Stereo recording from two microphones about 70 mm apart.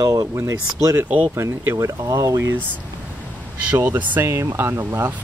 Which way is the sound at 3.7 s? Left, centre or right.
Right.